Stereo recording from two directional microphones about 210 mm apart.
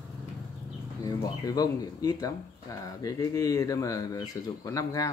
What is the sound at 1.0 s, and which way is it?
Speech, 20° left (ahead or behind).